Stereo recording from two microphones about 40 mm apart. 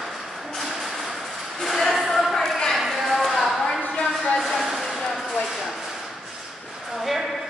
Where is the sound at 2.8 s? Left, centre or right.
Centre.